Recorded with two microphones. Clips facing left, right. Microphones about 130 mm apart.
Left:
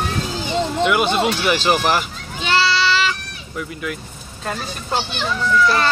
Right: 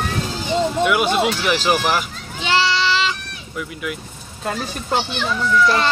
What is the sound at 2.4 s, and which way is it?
Goat, 20° right (ahead or behind).